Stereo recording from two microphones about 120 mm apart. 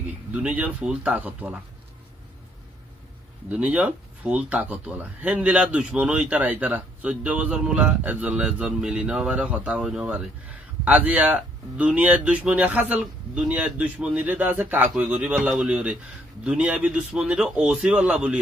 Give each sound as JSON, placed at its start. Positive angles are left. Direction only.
{"t": 0.0, "sound": "speech", "side_deg": -10}
{"t": 3.4, "sound": "speech", "side_deg": -10}